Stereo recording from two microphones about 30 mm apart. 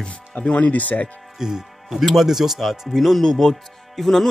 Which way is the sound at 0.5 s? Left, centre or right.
Left.